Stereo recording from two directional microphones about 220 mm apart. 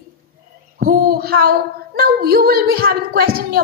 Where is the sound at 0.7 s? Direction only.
40° right (ahead or behind).